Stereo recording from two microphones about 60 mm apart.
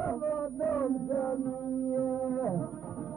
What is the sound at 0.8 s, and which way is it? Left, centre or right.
Music, centre.